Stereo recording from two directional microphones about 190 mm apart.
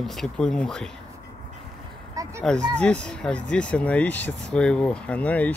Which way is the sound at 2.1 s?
15° right (ahead or behind).